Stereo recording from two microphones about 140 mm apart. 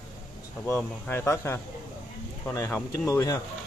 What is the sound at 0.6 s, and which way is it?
Speech, 15° left (ahead or behind).